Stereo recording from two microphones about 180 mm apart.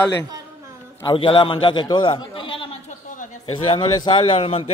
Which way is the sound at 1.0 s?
30° left (ahead or behind).